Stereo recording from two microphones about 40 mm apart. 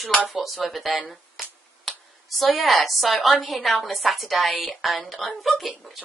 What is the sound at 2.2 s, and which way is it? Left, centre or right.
A woman's voice, centre.